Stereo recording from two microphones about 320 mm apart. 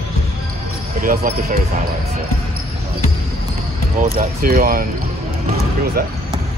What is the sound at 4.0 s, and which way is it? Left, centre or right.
Speech, right.